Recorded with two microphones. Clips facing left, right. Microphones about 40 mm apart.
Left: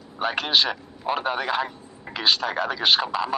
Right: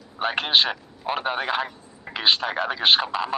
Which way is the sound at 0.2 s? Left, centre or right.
Centre.